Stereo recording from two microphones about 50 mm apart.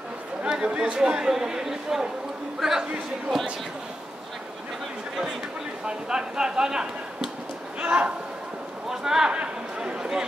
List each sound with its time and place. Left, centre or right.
0.5 s speech: centre
5.9 s speech: centre
8.8 s speech: centre
9.3 s speech: right